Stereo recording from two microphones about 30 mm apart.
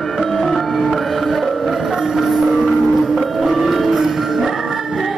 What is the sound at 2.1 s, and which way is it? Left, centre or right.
Music, centre.